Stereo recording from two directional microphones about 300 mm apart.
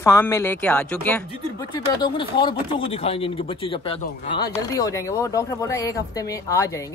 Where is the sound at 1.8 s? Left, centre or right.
Centre.